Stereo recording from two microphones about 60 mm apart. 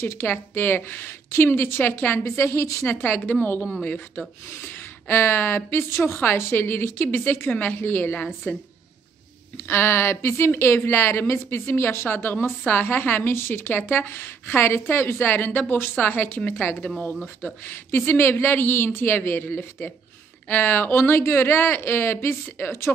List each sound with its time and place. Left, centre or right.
0.0 s a woman's voice: left
1.3 s a woman's voice: left
2.3 s a woman's voice: left
2.9 s a woman's voice: left
4.6 s a woman's voice: left
9.7 s a woman's voice: left